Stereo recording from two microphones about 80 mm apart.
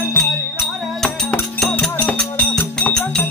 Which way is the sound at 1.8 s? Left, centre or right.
Centre.